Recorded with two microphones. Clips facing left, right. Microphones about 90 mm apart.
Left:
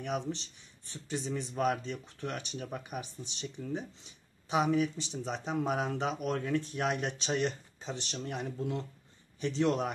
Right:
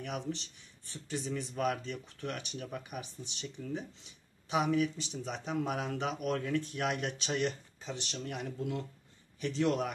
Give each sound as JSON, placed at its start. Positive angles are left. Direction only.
{"t": 0.0, "sound": "speech", "side_deg": 25}